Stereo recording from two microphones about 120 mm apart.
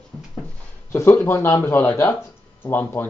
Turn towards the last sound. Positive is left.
turn(degrees=15)  # may be behind; listen again after turning